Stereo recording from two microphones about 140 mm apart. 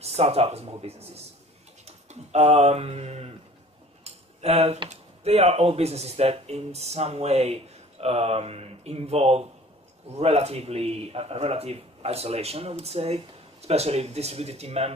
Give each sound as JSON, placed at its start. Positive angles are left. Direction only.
{"t": 0.0, "sound": "speech", "side_deg": -50}